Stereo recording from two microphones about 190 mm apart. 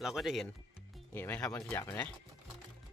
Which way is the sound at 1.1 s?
10° left (ahead or behind).